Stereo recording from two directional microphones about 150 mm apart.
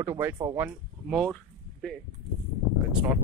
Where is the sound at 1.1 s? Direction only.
Centre (ahead or behind).